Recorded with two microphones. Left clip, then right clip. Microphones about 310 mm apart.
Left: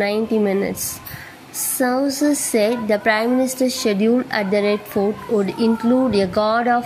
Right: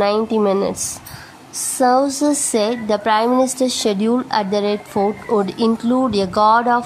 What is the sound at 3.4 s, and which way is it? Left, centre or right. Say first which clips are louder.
Speech: right 3 dB; right.